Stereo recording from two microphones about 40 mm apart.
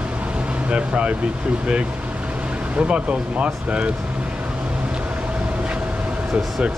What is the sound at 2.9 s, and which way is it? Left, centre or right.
Speech, right.